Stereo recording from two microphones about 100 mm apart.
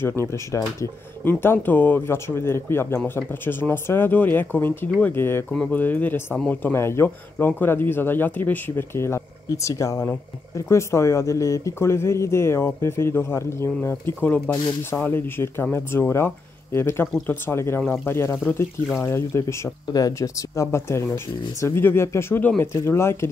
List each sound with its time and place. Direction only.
0.2 s speech: 30° left (ahead or behind)
1.2 s speech: 20° left (ahead or behind)
5.5 s speech: 5° left (ahead or behind)
5.8 s speech: 15° left (ahead or behind)